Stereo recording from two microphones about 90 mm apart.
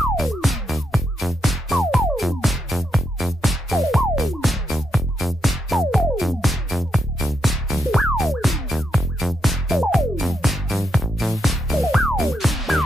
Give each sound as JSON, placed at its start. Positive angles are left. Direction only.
{"t": 0.2, "sound": "music", "side_deg": 0}